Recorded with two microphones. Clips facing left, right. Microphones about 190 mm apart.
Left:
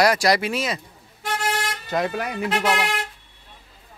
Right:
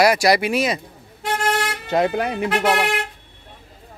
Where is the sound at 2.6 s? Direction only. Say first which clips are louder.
Right 5 dB; 55° right (ahead or behind).